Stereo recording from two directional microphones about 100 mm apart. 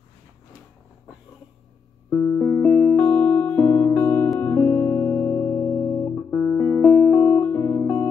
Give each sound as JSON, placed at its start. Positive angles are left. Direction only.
{"t": 2.0, "sound": "music", "side_deg": 15}